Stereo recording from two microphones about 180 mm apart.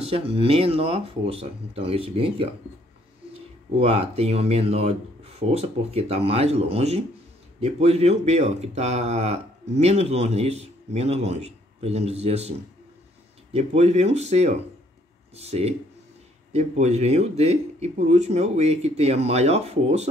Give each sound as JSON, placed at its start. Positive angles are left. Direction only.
{"t": 0.0, "sound": "speech", "side_deg": -30}
{"t": 3.7, "sound": "speech", "side_deg": -35}